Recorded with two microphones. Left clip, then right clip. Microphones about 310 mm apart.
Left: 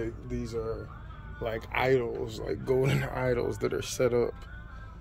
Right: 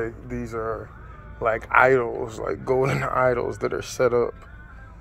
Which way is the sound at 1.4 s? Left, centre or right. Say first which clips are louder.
Right 12 dB; centre.